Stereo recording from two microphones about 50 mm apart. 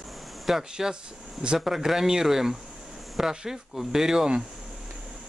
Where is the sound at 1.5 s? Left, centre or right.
Centre.